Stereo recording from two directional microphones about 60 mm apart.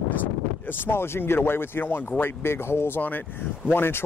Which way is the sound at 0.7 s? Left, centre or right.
Left.